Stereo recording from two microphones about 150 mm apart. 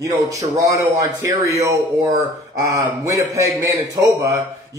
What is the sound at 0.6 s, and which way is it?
A man's voice, 20° right (ahead or behind).